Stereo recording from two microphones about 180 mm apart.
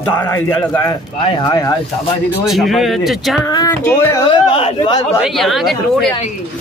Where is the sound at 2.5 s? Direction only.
Centre (ahead or behind).